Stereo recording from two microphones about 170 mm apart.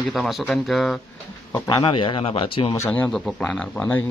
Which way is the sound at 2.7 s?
15° left (ahead or behind).